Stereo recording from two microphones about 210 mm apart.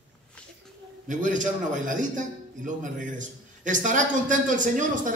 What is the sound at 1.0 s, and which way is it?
A man's voice, 35° right (ahead or behind).